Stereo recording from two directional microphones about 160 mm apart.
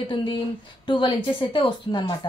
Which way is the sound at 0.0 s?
30° left (ahead or behind).